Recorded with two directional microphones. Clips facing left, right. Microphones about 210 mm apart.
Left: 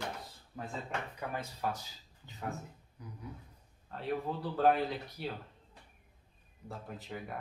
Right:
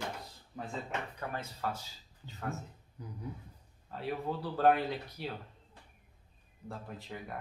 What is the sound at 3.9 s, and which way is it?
Speech, centre (ahead or behind).